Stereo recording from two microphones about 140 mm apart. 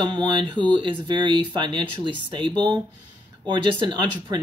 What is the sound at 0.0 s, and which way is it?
Speech, 35° right (ahead or behind).